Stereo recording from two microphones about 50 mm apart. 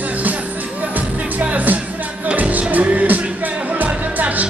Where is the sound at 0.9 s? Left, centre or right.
Right.